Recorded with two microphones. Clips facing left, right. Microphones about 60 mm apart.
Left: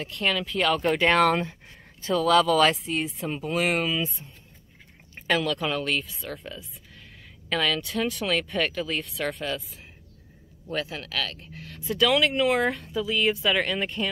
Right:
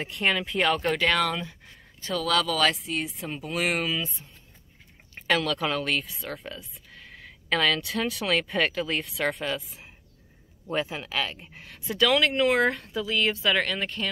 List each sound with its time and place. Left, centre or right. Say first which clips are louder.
0.0 s speech: right 1 dB; right
0.9 s speech: left 3 dB; left
1.2 s speech: left 6 dB; left
2.1 s speech: left 5 dB; centre
4.2 s speech: left 4 dB; left
5.2 s speech: even; centre
11.7 s speech: left 1 dB; centre